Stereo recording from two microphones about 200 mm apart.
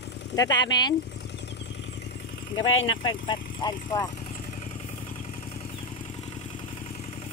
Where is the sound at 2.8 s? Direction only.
25° left (ahead or behind).